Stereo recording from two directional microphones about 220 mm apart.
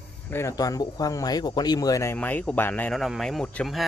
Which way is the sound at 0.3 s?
10° left (ahead or behind).